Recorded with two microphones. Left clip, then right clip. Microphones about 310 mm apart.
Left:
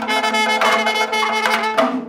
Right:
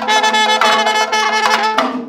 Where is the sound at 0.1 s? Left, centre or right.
Right.